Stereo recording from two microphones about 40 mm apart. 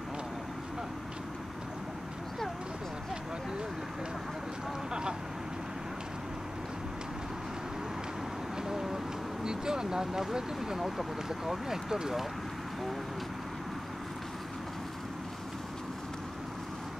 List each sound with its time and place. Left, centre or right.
8.6 s speech: centre